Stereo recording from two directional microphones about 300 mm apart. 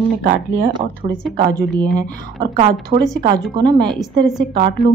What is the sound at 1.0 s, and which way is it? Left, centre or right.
Speech, right.